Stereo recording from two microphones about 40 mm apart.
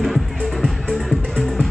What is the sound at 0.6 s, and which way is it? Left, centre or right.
Music, centre.